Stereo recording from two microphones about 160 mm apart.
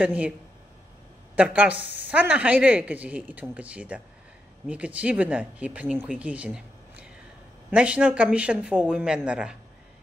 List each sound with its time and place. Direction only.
0.0 s a woman's voice: 10° right (ahead or behind)
1.3 s a woman's voice: 10° right (ahead or behind)